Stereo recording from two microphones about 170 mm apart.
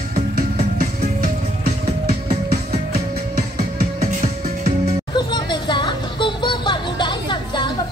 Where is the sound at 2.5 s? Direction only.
65° right (ahead or behind).